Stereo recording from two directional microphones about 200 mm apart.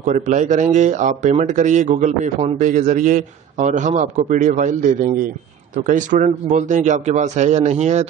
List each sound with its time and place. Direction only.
0.0 s a man's voice: 35° right (ahead or behind)